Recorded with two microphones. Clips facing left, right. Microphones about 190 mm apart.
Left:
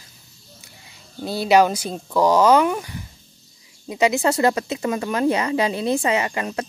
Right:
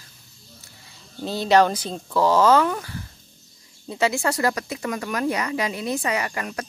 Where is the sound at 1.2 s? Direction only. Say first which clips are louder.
Left 2 dB; 10° left (ahead or behind).